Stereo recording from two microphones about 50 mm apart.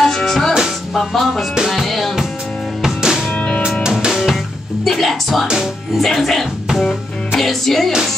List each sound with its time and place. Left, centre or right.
0.0 s music: centre
2.8 s music: centre
3.3 s music: left
3.8 s music: centre
4.8 s music: centre
5.9 s speech: centre
6.7 s music: centre